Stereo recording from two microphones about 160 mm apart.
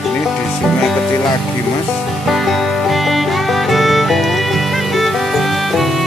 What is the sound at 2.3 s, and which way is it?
Music, centre (ahead or behind).